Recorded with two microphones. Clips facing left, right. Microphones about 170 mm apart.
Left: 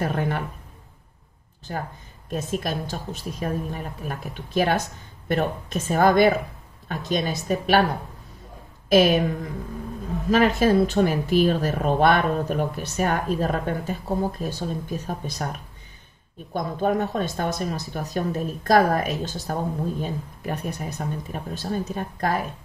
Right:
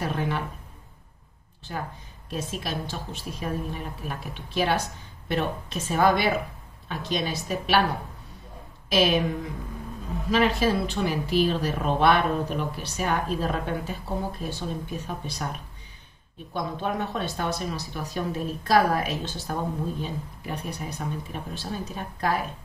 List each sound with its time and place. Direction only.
0.0 s speech: 50° left (ahead or behind)
2.4 s speech: 45° left (ahead or behind)
8.8 s a woman's voice: 45° left (ahead or behind)
10.3 s speech: 45° left (ahead or behind)
16.5 s speech: 40° left (ahead or behind)